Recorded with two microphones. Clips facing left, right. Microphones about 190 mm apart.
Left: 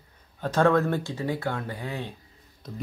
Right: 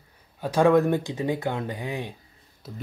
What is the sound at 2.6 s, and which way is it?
Speech, 5° right (ahead or behind).